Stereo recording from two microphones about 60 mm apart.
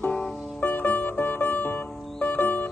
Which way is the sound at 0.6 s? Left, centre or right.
Left.